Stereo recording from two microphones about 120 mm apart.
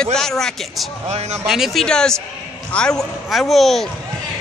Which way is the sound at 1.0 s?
65° right (ahead or behind).